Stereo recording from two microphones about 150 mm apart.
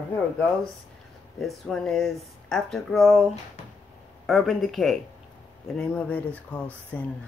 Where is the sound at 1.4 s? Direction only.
Centre (ahead or behind).